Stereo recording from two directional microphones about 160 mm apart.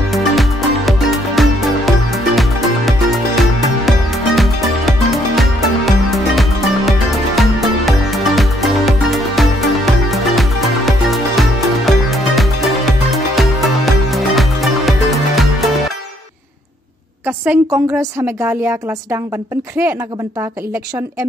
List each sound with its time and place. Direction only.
0.1 s music: centre (ahead or behind)
17.3 s a woman's voice: 15° right (ahead or behind)